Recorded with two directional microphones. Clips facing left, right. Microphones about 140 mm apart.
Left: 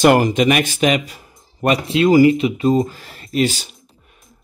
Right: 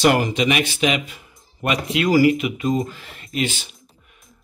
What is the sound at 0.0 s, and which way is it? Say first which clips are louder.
Speech: left 5 dB; 45° left (ahead or behind).